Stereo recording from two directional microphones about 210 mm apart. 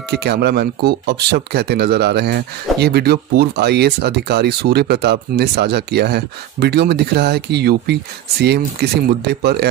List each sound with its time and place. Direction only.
0.1 s speech: 50° right (ahead or behind)